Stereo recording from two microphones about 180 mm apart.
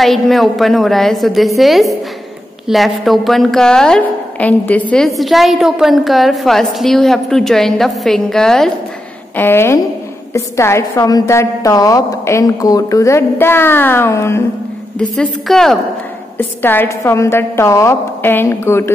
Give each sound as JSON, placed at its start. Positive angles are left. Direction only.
{"t": 0.0, "sound": "a woman's voice", "side_deg": 0}
{"t": 15.0, "sound": "a woman's voice", "side_deg": 5}